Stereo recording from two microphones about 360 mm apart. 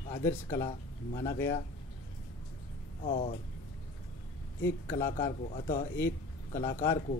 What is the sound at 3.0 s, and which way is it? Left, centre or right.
Speech, centre.